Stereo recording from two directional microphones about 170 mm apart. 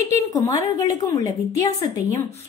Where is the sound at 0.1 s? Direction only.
20° left (ahead or behind).